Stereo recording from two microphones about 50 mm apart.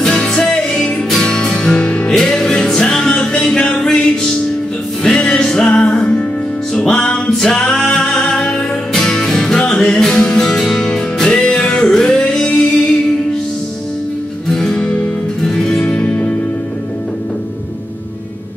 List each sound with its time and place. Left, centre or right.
0.0 s music: centre
2.0 s music: centre
5.0 s music: centre
14.5 s music: centre
14.8 s music: left
15.4 s music: centre
15.8 s music: left